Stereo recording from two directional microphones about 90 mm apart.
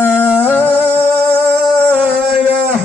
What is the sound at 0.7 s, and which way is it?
Music, 20° right (ahead or behind).